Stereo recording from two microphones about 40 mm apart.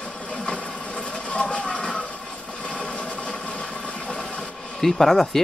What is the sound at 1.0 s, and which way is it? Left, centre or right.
Vehicle, left.